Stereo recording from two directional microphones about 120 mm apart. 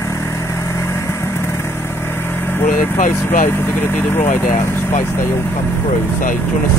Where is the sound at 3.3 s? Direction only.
20° left (ahead or behind).